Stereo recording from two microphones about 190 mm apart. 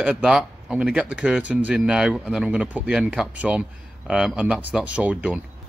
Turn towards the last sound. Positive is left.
turn(degrees=-5)  # may be behind; listen again after turning